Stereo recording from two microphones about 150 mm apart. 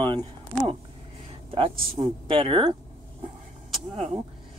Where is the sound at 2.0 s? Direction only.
35° right (ahead or behind).